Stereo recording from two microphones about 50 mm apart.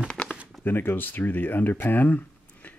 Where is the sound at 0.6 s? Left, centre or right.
Left.